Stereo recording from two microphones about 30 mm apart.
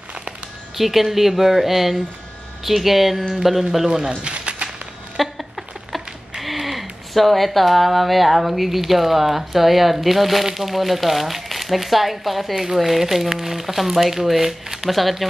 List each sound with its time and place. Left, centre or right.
0.7 s speech: centre
3.9 s speech: centre
4.2 s a sound: right
5.2 s a sound: centre
6.4 s speech: centre
14.9 s speech: centre